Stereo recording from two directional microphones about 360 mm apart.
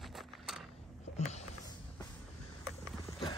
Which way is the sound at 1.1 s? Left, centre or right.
Centre.